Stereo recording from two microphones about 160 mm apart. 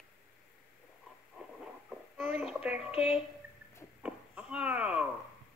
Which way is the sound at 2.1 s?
10° right (ahead or behind).